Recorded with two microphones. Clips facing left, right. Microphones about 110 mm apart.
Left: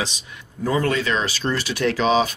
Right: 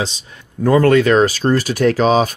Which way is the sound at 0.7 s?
55° right (ahead or behind).